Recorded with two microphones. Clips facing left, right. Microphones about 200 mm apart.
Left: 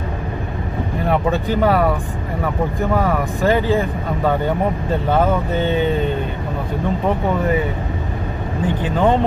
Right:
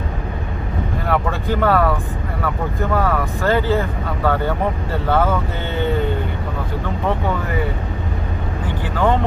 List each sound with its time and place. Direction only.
1.0 s speech: 15° left (ahead or behind)
2.9 s speech: 15° left (ahead or behind)
8.8 s speech: 20° left (ahead or behind)